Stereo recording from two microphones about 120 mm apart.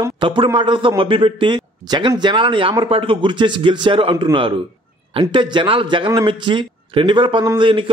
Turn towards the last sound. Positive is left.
turn(degrees=-45)  # may be behind; listen again after turning